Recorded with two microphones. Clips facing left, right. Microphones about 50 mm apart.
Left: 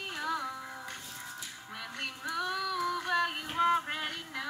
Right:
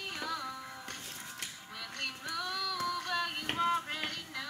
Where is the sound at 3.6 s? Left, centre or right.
Centre.